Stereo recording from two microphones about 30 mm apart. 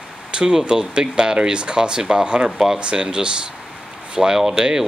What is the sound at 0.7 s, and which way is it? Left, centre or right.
Speech, right.